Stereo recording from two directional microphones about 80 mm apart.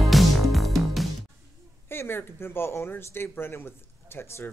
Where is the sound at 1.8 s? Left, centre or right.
Left.